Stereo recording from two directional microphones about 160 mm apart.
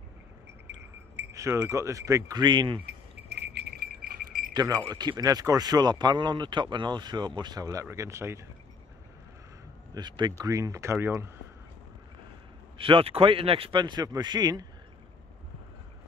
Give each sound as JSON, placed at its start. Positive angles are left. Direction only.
{"t": 0.7, "sound": "a sound", "side_deg": -90}
{"t": 1.3, "sound": "speech", "side_deg": -20}
{"t": 3.3, "sound": "a sound", "side_deg": -90}
{"t": 4.6, "sound": "speech", "side_deg": -20}
{"t": 9.9, "sound": "speech", "side_deg": -30}
{"t": 12.7, "sound": "speech", "side_deg": -35}